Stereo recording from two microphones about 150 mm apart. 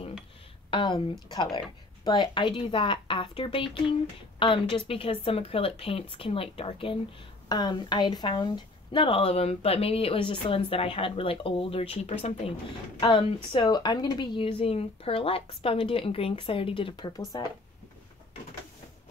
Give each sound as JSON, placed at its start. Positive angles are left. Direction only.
{"t": 0.7, "sound": "speech", "side_deg": 30}